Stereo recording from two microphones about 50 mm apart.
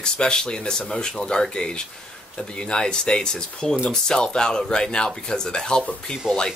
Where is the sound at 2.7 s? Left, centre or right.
Centre.